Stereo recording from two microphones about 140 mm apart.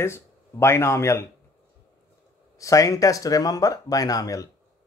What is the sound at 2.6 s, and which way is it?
Speech, 25° left (ahead or behind).